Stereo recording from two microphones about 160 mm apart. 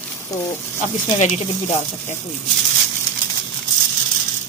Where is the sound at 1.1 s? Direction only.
45° left (ahead or behind).